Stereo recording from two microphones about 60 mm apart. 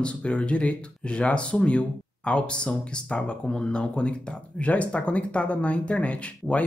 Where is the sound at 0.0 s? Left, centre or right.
Centre.